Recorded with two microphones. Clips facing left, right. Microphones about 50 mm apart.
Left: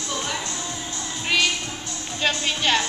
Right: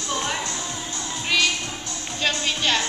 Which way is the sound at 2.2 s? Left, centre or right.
Centre.